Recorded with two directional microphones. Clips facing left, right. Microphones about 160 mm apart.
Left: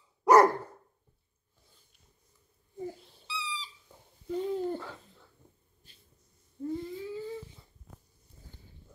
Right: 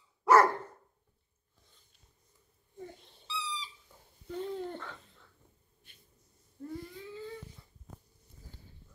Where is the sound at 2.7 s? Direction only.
5° left (ahead or behind).